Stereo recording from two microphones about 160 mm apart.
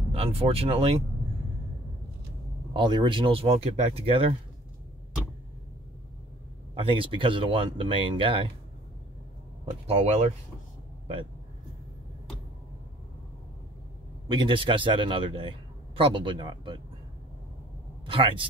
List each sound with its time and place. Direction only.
0.1 s speech: 35° right (ahead or behind)
2.7 s speech: 30° right (ahead or behind)
6.7 s speech: 35° right (ahead or behind)
9.8 s speech: 40° right (ahead or behind)
14.3 s speech: 30° right (ahead or behind)
18.0 s speech: 30° right (ahead or behind)